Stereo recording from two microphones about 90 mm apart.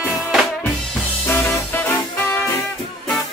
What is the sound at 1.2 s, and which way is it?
Music, 25° left (ahead or behind).